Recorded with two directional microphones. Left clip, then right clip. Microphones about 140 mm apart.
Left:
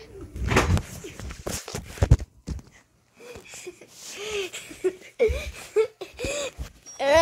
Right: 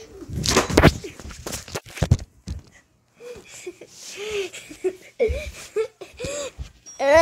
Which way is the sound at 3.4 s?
40° right (ahead or behind).